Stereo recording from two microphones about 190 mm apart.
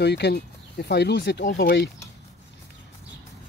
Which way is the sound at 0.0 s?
60° left (ahead or behind).